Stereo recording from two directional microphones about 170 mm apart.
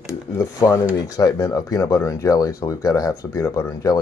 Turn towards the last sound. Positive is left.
turn(degrees=20)  # may be behind; listen again after turning